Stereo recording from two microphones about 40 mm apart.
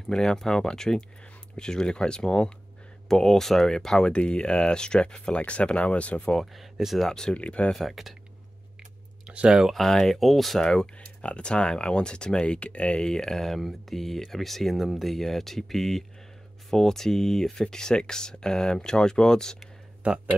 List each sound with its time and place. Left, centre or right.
0.1 s speech: centre
4.1 s speech: left
6.4 s speech: centre
7.1 s speech: centre
7.3 s speech: left
7.7 s speech: centre
9.3 s speech: right
9.7 s speech: centre
10.6 s speech: centre
11.1 s speech: left; by 13.6 s centre
13.6 s speech: centre
20.0 s speech: right